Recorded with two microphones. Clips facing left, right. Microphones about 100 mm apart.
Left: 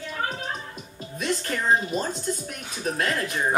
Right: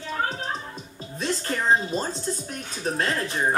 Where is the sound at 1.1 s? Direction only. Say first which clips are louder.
Even; 30° right (ahead or behind).